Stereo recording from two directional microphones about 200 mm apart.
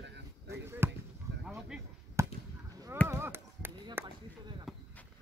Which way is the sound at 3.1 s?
10° right (ahead or behind).